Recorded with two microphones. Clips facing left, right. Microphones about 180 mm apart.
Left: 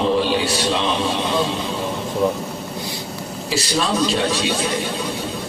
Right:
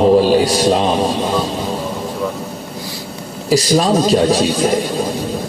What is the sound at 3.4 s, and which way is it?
A man's voice, 40° right (ahead or behind).